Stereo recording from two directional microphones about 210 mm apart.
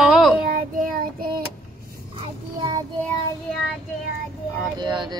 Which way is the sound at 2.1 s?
25° right (ahead or behind).